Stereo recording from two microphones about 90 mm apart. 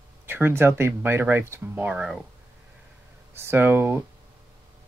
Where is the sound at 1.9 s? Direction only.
5° right (ahead or behind).